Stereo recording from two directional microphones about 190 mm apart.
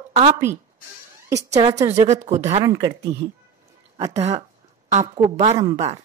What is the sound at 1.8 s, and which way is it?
Speech, 15° right (ahead or behind).